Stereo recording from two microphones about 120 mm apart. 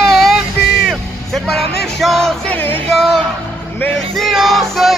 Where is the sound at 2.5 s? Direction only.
50° right (ahead or behind).